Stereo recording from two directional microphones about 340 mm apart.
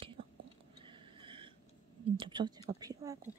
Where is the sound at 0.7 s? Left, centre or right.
Centre.